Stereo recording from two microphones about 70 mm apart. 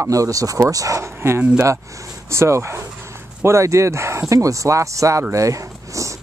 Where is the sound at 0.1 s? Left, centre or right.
Right.